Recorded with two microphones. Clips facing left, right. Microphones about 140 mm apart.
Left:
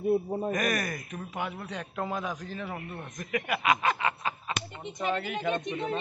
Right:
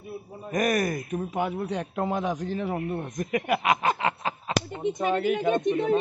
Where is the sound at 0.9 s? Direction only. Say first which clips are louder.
Right 8 dB; 20° right (ahead or behind).